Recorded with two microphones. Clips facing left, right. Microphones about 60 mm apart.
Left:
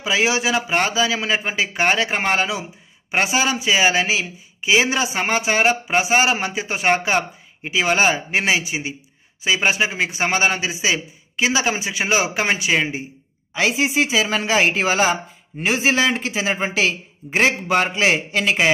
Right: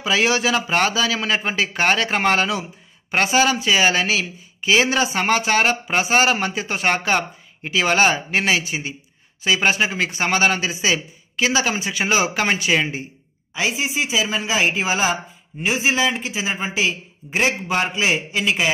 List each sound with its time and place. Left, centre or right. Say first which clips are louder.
0.0 s a man's voice: right 1 dB; centre
13.6 s speech: left 4 dB; left